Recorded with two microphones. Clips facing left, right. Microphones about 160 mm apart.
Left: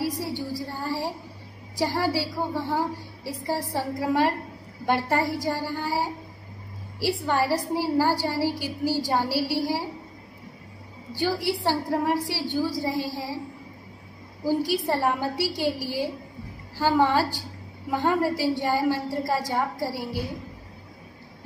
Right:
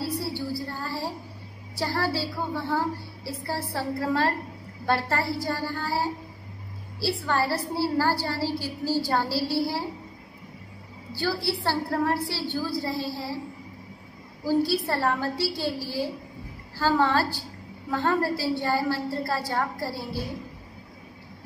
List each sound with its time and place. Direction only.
0.0 s a sound: 15° left (ahead or behind)
1.8 s a woman's voice: 15° left (ahead or behind)
11.1 s a woman's voice: 15° left (ahead or behind)
14.4 s a woman's voice: 15° left (ahead or behind)